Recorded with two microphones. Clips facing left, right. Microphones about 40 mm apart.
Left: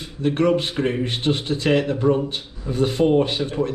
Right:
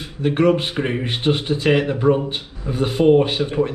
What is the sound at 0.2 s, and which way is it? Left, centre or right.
Speech, centre.